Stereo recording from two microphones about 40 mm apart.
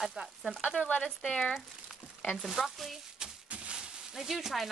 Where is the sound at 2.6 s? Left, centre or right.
Centre.